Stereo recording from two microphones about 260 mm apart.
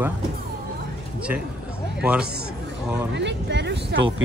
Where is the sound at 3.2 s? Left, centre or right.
Right.